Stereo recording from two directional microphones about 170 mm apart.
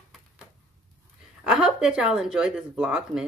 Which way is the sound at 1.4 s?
5° right (ahead or behind).